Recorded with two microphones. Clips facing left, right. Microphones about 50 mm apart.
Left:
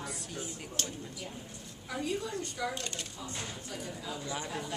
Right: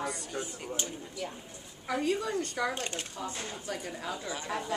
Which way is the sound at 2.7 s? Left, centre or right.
Right.